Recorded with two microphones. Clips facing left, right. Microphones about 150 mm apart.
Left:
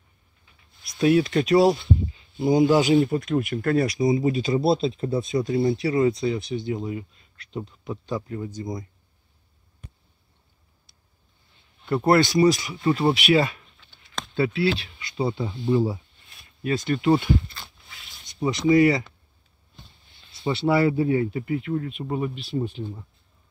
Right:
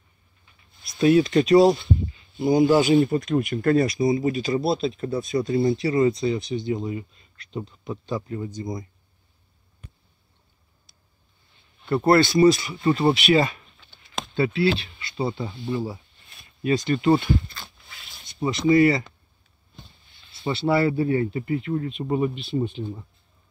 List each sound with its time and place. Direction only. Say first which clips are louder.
0.8 s speech: right 2 dB; 10° left (ahead or behind)
2.3 s speech: right 1 dB; 20° left (ahead or behind); by 3.8 s centre (ahead or behind)
4.0 s speech: even; 20° left (ahead or behind)
5.4 s speech: right 2 dB; 5° left (ahead or behind)
11.8 s speech: right 1 dB; 5° left (ahead or behind)
15.6 s speech: left 7 dB; 20° left (ahead or behind)
16.6 s speech: right 2 dB; centre (ahead or behind)
18.2 s speech: even; 15° left (ahead or behind)
20.5 s speech: even; 10° left (ahead or behind)